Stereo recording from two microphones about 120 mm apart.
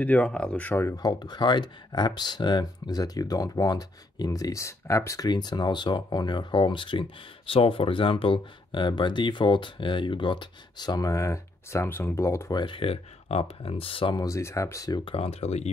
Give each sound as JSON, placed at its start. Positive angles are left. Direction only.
{"t": 0.0, "sound": "speech", "side_deg": 10}
{"t": 1.0, "sound": "speech", "side_deg": 35}
{"t": 5.3, "sound": "speech", "side_deg": 35}
{"t": 12.5, "sound": "speech", "side_deg": 45}
{"t": 14.1, "sound": "speech", "side_deg": 25}
{"t": 15.0, "sound": "speech", "side_deg": 55}